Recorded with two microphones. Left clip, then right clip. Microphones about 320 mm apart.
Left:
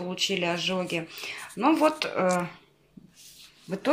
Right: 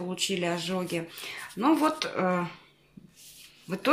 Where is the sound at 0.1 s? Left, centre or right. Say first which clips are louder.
Left 3 dB; centre.